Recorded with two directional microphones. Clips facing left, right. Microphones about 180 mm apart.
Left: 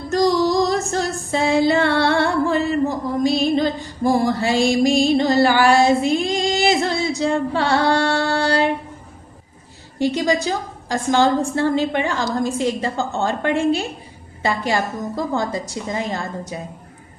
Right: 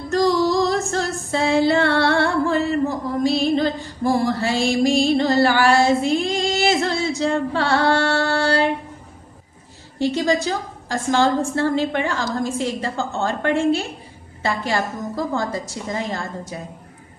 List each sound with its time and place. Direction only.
0.1 s female singing: 15° left (ahead or behind)
3.3 s music: 15° left (ahead or behind)
9.9 s a woman's voice: 15° left (ahead or behind)